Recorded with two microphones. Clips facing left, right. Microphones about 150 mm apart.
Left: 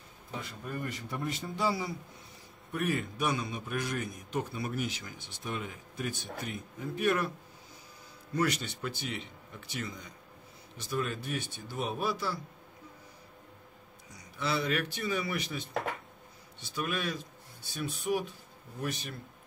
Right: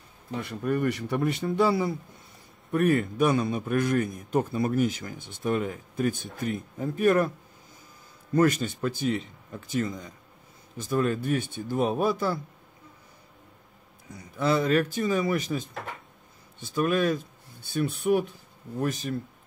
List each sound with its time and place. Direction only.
0.4 s a man's voice: 65° right (ahead or behind); by 7.2 s 45° right (ahead or behind)
8.4 s a man's voice: 50° right (ahead or behind)
14.1 s a man's voice: 50° right (ahead or behind)
18.8 s a man's voice: 45° right (ahead or behind)